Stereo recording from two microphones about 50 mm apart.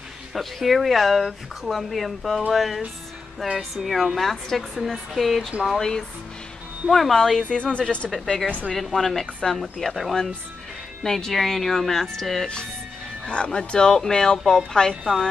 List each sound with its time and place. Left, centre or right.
0.3 s speech: centre
7.5 s speech: left
8.1 s speech: centre
13.2 s speech: centre